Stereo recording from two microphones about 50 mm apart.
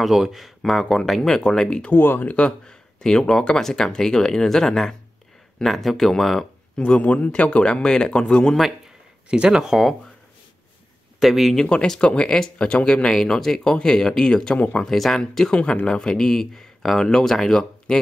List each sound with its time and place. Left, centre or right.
0.0 s speech: centre
2.0 s speech: left
2.3 s speech: centre
6.8 s speech: left
8.5 s a man's voice: centre
11.1 s speech: centre
11.5 s speech: centre
13.1 s speech: centre